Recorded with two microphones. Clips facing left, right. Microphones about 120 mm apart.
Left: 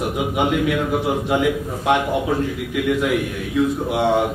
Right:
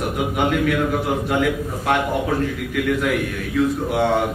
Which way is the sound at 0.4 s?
15° left (ahead or behind).